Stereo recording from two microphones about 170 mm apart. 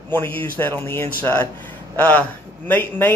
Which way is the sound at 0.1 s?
10° left (ahead or behind).